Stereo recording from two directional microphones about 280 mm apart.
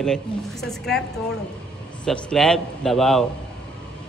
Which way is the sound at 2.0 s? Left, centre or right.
Centre.